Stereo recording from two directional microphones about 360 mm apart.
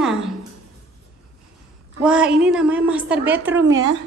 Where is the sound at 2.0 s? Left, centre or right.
Centre.